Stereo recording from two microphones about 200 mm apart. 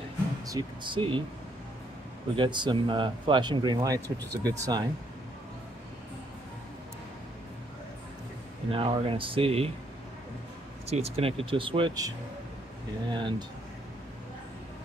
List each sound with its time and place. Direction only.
0.5 s speech: 20° right (ahead or behind)
2.3 s speech: 25° right (ahead or behind)
8.7 s speech: 25° right (ahead or behind)
10.9 s speech: 30° right (ahead or behind)
13.1 s speech: 25° right (ahead or behind)